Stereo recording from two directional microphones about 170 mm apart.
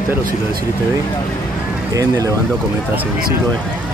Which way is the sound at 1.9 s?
20° right (ahead or behind).